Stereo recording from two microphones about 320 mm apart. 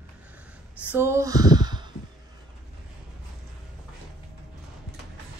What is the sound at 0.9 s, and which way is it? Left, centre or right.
Speech, centre.